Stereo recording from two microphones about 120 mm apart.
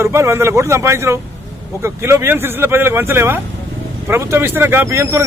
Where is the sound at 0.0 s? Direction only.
20° right (ahead or behind).